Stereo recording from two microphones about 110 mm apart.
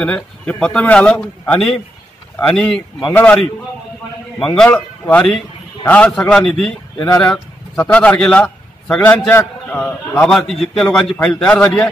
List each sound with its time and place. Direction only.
0.0 s a man's voice: 10° left (ahead or behind)
3.1 s a man's voice: 20° left (ahead or behind)
4.4 s a man's voice: 5° left (ahead or behind)
7.7 s a man's voice: 15° left (ahead or behind)
9.3 s a man's voice: 20° left (ahead or behind)
10.1 s a man's voice: 5° left (ahead or behind)